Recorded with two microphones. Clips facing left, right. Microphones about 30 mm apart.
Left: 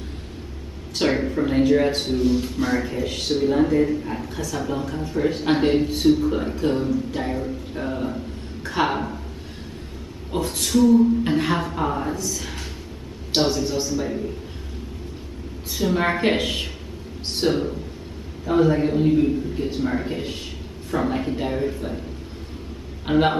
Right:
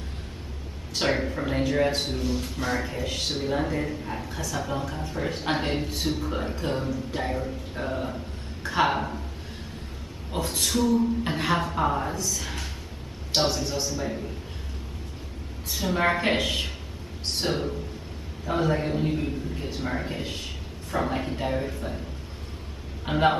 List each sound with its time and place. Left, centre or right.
0.9 s a man's voice: centre
10.3 s a man's voice: centre
15.7 s a man's voice: centre
23.0 s speech: centre